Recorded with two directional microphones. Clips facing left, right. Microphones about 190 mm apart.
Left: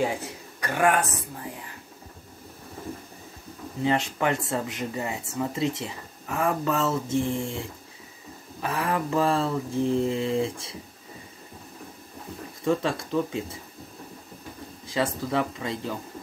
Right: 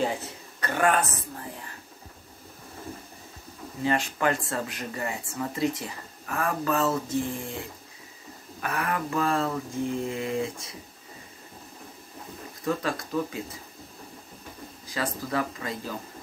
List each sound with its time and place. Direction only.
0.6 s speech: 15° left (ahead or behind)
3.8 s speech: 20° left (ahead or behind)
8.6 s speech: 25° left (ahead or behind)
12.6 s speech: 25° left (ahead or behind)
14.9 s speech: 25° left (ahead or behind)